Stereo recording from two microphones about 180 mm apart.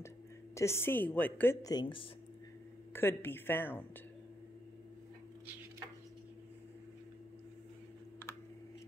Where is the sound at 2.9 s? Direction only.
10° left (ahead or behind).